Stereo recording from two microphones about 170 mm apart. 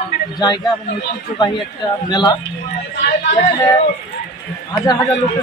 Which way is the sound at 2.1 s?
25° left (ahead or behind).